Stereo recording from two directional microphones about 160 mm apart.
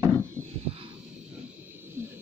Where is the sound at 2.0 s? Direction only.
15° right (ahead or behind).